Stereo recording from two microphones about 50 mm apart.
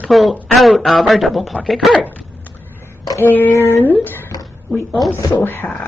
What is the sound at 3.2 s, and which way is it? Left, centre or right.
Speech, left.